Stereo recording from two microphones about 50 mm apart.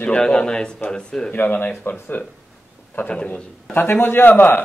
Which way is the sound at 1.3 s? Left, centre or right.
Left.